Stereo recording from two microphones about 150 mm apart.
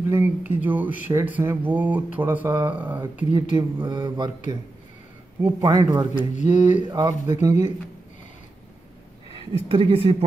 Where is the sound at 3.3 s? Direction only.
30° right (ahead or behind).